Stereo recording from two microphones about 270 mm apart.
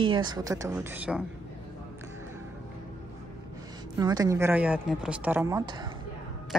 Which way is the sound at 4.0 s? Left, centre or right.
Centre.